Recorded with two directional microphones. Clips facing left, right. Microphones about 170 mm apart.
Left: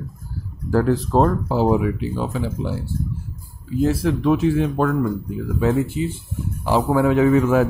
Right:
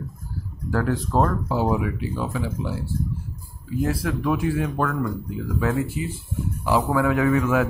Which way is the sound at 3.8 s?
25° left (ahead or behind).